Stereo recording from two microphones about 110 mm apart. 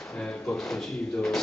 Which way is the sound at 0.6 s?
5° left (ahead or behind).